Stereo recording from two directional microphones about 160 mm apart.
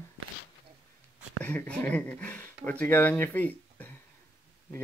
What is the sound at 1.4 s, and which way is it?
Speech, 10° left (ahead or behind).